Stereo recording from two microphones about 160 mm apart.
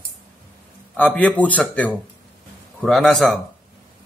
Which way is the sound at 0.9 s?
10° left (ahead or behind).